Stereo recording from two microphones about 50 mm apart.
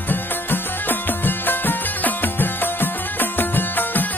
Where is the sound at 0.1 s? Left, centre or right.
Left.